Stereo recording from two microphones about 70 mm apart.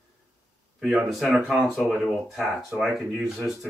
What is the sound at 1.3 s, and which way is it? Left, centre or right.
Speech, centre.